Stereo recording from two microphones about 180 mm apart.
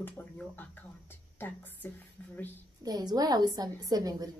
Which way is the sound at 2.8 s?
20° right (ahead or behind).